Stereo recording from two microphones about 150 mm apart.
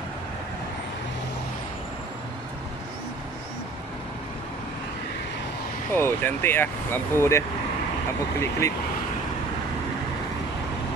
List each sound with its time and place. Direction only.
5.9 s speech: 15° left (ahead or behind)